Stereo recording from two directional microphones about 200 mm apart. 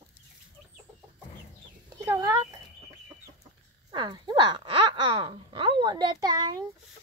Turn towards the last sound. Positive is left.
turn(degrees=-20)  # may be behind; listen again after turning